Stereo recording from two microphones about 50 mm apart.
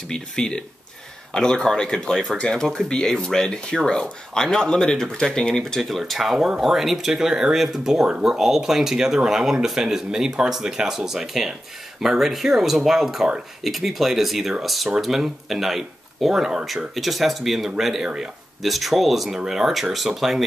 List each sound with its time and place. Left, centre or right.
0.1 s speech: centre
18.6 s speech: centre